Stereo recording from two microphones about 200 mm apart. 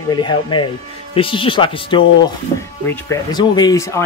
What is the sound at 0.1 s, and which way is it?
Speech, 25° left (ahead or behind).